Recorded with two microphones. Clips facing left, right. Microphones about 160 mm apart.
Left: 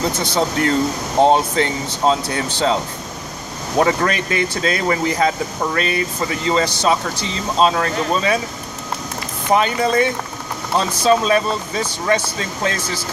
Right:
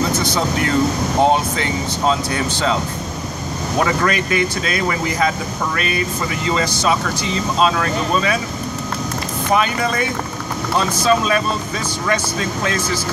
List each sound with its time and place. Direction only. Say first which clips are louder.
0.2 s speech: left 1 dB; 30° left (ahead or behind)
9.5 s speech: left 2 dB; 30° left (ahead or behind)